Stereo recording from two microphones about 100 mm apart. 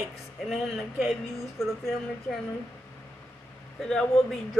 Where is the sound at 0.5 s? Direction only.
5° right (ahead or behind).